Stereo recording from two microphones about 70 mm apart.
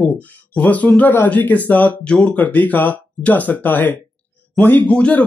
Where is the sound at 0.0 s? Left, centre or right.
Left.